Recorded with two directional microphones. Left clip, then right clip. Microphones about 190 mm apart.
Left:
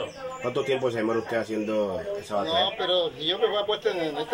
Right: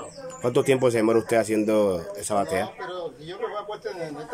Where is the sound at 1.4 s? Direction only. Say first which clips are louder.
Right 5 dB; 35° right (ahead or behind).